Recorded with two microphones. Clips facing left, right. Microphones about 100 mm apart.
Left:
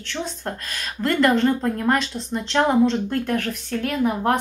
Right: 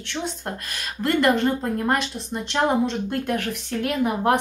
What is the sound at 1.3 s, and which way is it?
A woman's voice, 10° right (ahead or behind).